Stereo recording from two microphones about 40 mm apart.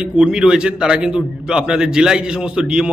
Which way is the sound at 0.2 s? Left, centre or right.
Right.